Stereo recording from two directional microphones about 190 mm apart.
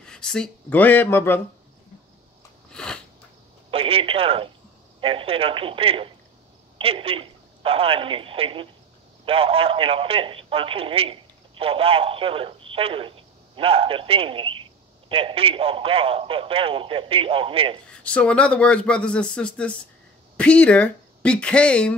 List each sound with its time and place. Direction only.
0.0 s speech: 5° left (ahead or behind)
2.7 s a sound: 5° left (ahead or behind)
3.7 s telephone: 30° right (ahead or behind)
5.0 s speech: 30° right (ahead or behind)
17.9 s speech: 5° left (ahead or behind)